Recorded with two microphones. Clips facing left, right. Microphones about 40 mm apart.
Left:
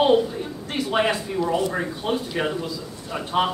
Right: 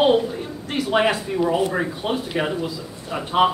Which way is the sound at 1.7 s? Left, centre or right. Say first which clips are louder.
Right 1 dB; centre.